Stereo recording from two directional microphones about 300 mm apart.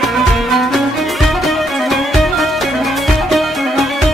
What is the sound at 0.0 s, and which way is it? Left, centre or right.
Music, centre.